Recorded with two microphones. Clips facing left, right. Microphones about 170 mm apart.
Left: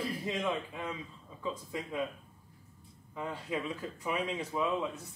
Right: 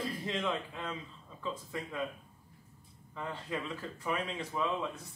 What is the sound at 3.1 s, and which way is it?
Speech, 10° left (ahead or behind).